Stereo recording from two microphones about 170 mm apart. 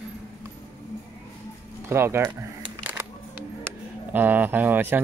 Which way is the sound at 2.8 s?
10° right (ahead or behind).